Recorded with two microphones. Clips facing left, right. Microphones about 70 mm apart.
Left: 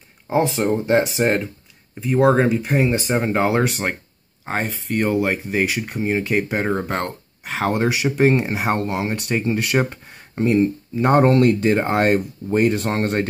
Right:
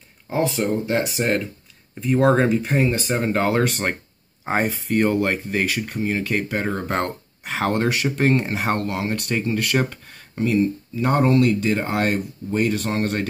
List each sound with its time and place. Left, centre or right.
0.3 s speech: left
2.0 s speech: centre
2.9 s speech: centre
4.5 s speech: centre
6.9 s speech: centre; by 11.1 s left
11.1 s speech: left